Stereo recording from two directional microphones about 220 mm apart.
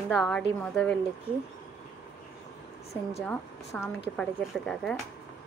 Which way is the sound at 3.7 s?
5° left (ahead or behind).